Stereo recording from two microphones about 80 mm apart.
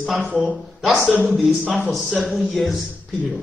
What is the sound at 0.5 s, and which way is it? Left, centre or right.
Speech, centre.